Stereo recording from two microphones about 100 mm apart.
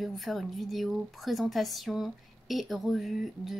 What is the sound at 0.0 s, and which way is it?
A woman's voice, centre (ahead or behind).